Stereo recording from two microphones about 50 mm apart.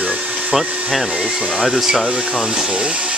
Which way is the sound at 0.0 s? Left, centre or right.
Right.